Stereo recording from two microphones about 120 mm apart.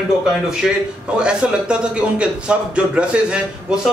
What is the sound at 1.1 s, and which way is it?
A man's voice, 10° right (ahead or behind).